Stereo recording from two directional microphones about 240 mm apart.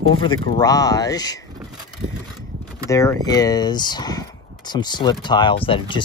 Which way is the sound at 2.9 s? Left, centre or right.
Centre.